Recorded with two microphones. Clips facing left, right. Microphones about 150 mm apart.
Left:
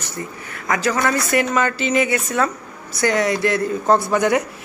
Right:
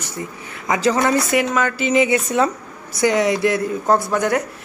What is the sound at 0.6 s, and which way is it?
Speech, 20° right (ahead or behind).